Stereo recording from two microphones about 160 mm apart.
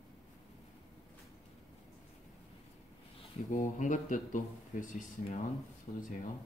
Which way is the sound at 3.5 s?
55° left (ahead or behind).